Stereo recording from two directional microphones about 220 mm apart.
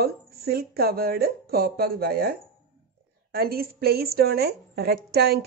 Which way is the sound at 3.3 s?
45° right (ahead or behind).